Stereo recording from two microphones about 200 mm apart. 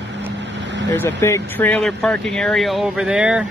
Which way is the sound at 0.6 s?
65° right (ahead or behind).